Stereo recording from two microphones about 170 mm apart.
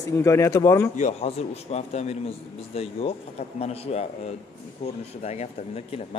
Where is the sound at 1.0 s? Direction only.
40° left (ahead or behind).